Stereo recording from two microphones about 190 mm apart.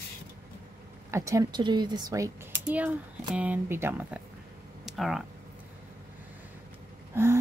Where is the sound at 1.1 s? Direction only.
15° right (ahead or behind).